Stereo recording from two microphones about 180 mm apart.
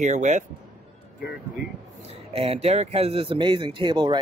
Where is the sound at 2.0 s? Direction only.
35° right (ahead or behind).